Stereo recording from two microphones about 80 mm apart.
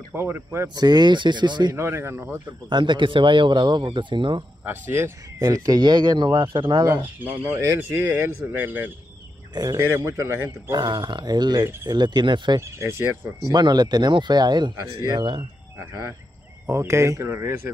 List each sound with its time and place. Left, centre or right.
0.1 s speech: right
0.7 s speech: right
1.7 s speech: right
2.7 s speech: right
4.6 s speech: right
5.4 s speech: right
5.8 s speech: right
7.0 s speech: right
10.7 s speech: right
12.5 s speech: right
13.5 s speech: right
14.8 s speech: right
15.1 s speech: right
16.6 s speech: right